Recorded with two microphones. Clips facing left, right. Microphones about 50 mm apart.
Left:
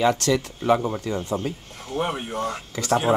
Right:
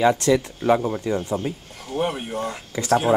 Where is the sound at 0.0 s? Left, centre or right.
Right.